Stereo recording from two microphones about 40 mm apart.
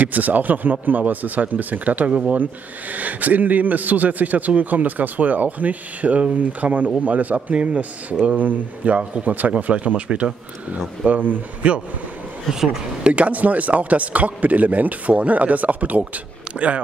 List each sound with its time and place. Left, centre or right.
0.0 s a man's voice: right
11.1 s speech: right
13.0 s speech: right